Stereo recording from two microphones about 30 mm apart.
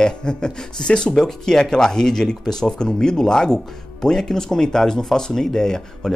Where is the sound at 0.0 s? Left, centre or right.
Left.